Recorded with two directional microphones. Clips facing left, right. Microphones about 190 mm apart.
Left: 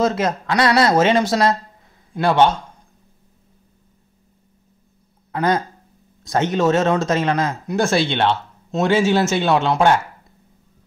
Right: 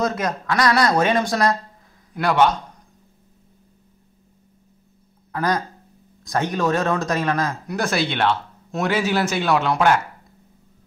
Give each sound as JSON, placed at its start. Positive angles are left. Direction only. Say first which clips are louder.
{"t": 0.0, "sound": "speech", "louder": "left 4 dB", "side_deg": 25}
{"t": 5.3, "sound": "speech", "louder": "left 3 dB", "side_deg": 25}